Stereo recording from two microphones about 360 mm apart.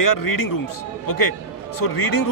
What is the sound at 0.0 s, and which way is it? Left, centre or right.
Speech, left.